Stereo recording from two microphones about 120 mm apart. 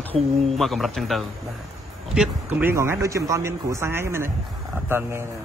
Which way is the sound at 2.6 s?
20° right (ahead or behind).